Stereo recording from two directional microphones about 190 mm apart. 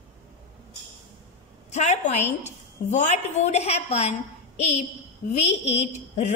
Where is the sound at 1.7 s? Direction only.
35° left (ahead or behind).